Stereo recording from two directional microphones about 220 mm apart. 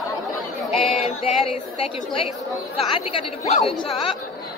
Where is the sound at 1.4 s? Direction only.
25° left (ahead or behind).